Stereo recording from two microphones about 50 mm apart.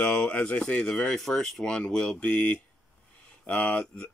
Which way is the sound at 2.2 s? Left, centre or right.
Left.